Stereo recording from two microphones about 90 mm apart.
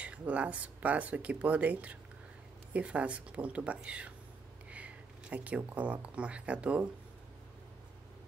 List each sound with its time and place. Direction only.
0.0 s speech: 15° right (ahead or behind)